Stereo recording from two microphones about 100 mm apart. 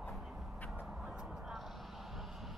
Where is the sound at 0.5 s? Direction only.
15° left (ahead or behind).